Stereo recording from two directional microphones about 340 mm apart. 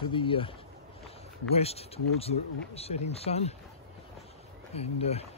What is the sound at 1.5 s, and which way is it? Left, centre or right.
Speech, centre.